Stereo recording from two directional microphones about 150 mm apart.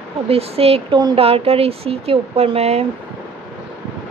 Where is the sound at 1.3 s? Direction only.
40° right (ahead or behind).